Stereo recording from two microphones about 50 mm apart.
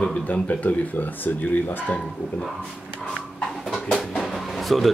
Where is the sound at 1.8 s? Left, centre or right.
Centre.